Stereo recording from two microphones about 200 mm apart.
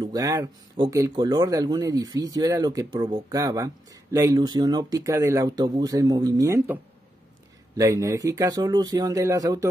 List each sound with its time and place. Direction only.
0.0 s speech: 15° right (ahead or behind)